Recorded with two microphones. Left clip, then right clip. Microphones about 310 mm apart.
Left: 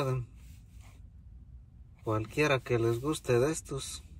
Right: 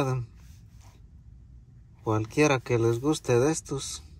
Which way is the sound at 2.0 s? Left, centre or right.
Centre.